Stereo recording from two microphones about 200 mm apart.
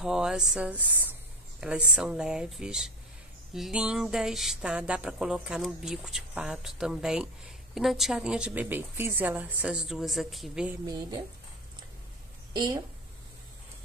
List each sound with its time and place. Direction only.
0.0 s speech: 5° right (ahead or behind)